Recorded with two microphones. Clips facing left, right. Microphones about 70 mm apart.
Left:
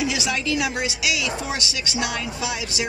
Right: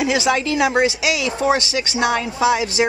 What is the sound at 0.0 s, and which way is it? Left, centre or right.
Speech, right.